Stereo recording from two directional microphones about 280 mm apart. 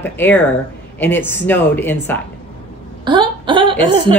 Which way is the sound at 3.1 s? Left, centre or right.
Centre.